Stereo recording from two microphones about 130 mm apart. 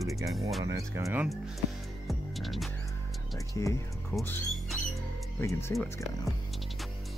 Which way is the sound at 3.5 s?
25° left (ahead or behind).